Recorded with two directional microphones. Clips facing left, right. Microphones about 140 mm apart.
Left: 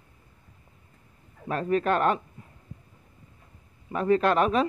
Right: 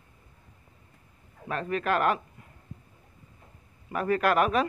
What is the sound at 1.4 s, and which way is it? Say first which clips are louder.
Speech: left 4 dB; 35° left (ahead or behind).